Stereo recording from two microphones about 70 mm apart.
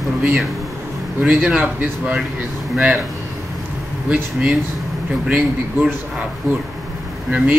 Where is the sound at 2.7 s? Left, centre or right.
Centre.